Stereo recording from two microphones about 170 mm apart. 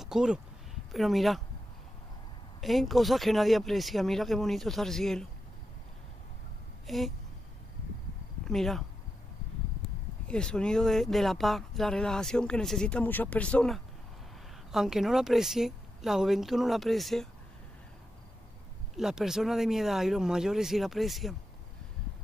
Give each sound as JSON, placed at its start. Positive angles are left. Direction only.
{"t": 0.0, "sound": "speech", "side_deg": -5}
{"t": 2.6, "sound": "speech", "side_deg": 0}
{"t": 6.9, "sound": "speech", "side_deg": 0}
{"t": 8.5, "sound": "speech", "side_deg": 0}
{"t": 10.2, "sound": "speech", "side_deg": 5}
{"t": 18.9, "sound": "speech", "side_deg": -5}